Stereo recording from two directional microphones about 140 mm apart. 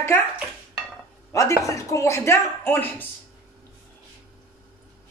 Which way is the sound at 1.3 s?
20° left (ahead or behind).